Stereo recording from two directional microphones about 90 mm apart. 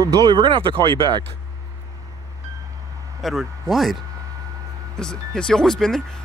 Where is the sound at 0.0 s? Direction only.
45° right (ahead or behind); by 1.0 s 70° right (ahead or behind).